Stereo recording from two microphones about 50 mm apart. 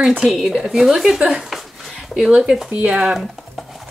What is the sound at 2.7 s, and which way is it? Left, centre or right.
Speech, right.